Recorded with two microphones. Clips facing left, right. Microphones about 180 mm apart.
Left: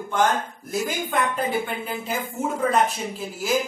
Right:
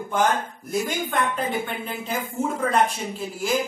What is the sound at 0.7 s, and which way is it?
A woman's voice, centre (ahead or behind).